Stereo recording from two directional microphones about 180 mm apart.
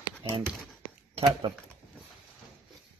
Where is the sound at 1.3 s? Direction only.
25° right (ahead or behind).